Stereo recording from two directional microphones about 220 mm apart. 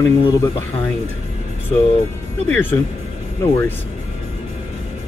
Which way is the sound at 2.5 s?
10° left (ahead or behind).